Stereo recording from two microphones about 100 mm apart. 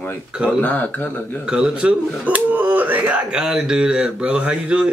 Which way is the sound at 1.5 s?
10° right (ahead or behind).